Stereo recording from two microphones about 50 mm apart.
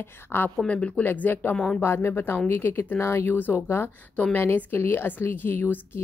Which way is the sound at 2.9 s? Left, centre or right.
Left.